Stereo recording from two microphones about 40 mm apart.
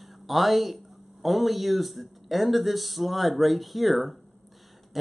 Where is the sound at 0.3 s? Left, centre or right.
Centre.